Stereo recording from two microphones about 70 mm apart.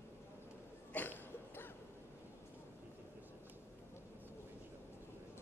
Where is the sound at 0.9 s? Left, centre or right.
Left.